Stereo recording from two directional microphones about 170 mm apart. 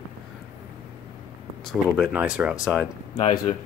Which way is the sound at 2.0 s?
5° right (ahead or behind).